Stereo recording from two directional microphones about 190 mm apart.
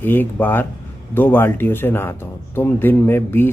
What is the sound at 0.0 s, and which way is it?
Speech, 10° left (ahead or behind).